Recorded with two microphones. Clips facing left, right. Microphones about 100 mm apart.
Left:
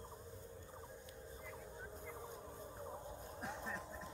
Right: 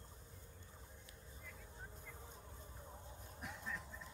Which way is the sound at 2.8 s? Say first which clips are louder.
Left 8 dB; 30° left (ahead or behind).